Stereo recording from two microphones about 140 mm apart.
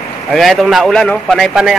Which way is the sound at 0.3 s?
Centre (ahead or behind).